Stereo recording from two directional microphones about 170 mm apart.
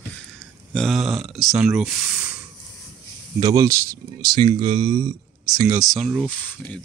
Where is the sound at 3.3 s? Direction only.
20° right (ahead or behind).